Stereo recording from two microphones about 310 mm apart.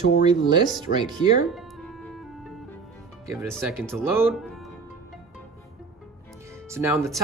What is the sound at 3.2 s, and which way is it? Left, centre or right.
Speech, centre.